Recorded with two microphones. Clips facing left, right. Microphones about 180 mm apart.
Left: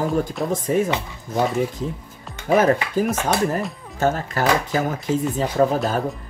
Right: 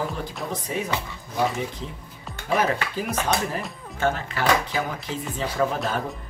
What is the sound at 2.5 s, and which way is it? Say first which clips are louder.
Speech: left 7 dB; 45° left (ahead or behind).